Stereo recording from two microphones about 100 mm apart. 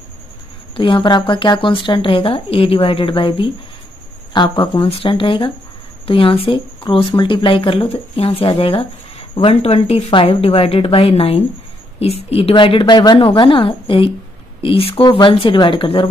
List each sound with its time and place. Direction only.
0.7 s speech: 55° left (ahead or behind)
6.9 s a woman's voice: 55° left (ahead or behind); by 12.5 s 80° left
12.5 s speech: 55° left (ahead or behind)
15.0 s speech: 55° left (ahead or behind)